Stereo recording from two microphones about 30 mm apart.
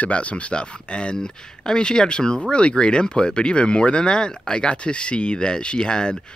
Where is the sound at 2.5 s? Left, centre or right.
Left.